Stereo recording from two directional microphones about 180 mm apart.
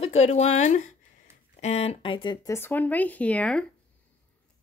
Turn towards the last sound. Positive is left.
turn(degrees=5)  # may be behind; listen again after turning